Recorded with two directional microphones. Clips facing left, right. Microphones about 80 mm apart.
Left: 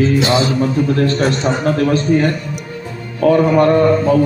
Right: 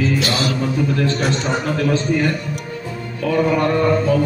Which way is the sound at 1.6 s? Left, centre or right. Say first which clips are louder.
Left 6 dB; left.